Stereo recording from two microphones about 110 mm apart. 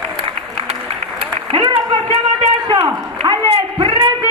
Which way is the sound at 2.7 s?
45° right (ahead or behind).